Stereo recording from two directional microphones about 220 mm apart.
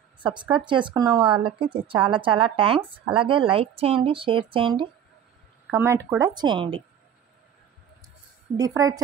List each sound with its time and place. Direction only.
0.2 s speech: 20° right (ahead or behind)
5.7 s speech: 10° right (ahead or behind)
8.5 s speech: 15° right (ahead or behind)